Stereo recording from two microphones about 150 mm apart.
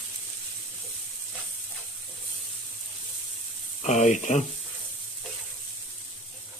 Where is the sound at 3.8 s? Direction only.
50° left (ahead or behind).